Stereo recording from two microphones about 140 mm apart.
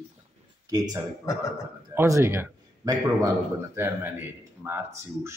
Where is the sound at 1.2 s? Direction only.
25° left (ahead or behind).